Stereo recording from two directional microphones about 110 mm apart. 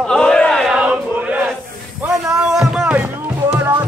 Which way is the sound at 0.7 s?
10° right (ahead or behind).